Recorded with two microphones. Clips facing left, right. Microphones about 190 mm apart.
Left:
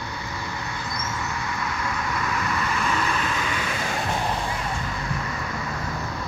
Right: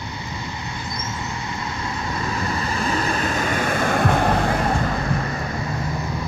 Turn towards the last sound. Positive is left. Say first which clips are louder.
# right 6 dB
turn(degrees=-40)  # may be behind; listen again after turning